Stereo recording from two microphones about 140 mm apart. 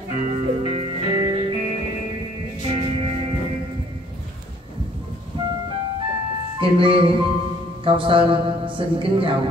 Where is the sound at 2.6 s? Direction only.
40° right (ahead or behind).